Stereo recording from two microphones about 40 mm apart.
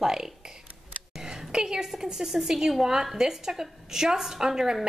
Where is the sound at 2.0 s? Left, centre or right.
Centre.